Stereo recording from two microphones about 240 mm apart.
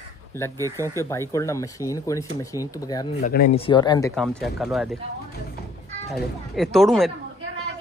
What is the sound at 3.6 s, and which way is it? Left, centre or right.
Speech, centre.